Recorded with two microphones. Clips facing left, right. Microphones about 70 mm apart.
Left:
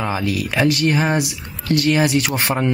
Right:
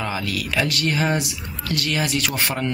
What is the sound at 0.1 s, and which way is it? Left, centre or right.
Speech, left.